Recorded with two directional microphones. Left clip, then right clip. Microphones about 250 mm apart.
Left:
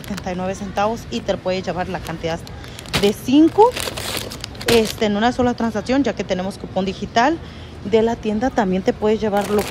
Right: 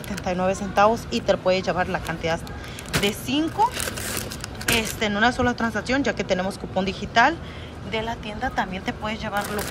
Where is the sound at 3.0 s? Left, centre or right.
Left.